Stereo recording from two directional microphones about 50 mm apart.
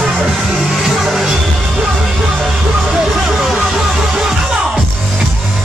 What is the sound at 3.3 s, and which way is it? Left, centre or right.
Music, centre.